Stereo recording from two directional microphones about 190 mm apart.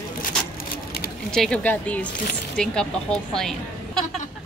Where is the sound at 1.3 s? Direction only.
5° left (ahead or behind).